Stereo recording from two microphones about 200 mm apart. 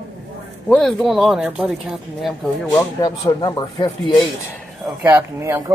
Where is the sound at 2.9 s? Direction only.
15° left (ahead or behind).